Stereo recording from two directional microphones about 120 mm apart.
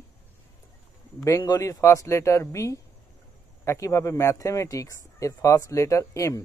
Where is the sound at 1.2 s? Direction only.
30° left (ahead or behind).